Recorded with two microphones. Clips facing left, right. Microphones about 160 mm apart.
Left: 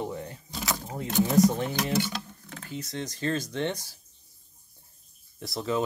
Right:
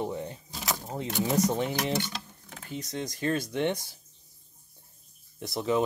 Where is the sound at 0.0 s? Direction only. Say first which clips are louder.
Right 1 dB; 20° right (ahead or behind).